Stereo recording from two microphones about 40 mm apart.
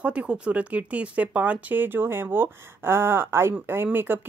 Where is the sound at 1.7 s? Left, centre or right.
Right.